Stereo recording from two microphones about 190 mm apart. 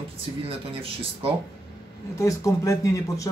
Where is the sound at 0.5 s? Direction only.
30° right (ahead or behind).